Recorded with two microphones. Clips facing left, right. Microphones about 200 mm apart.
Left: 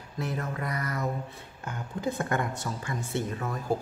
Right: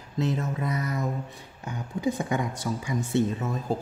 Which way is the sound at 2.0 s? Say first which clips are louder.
Right 2 dB; 15° right (ahead or behind).